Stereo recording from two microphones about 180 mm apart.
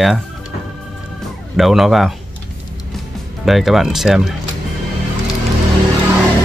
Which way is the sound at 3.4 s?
Centre (ahead or behind).